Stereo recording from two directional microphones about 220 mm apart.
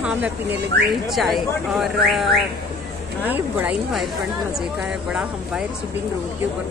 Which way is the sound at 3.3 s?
5° right (ahead or behind).